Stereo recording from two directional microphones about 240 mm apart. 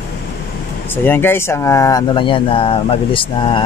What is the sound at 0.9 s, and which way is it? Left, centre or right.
Speech, centre.